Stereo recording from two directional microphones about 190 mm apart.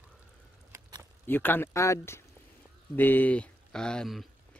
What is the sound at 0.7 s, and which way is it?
Biting, 20° right (ahead or behind).